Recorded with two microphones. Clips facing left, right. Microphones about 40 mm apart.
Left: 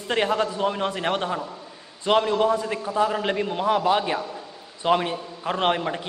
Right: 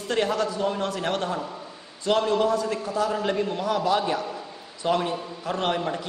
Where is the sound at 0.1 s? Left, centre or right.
Left.